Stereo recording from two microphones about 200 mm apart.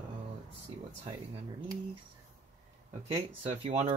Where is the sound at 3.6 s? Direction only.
35° right (ahead or behind).